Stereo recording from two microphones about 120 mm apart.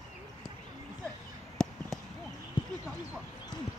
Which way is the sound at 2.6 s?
40° left (ahead or behind).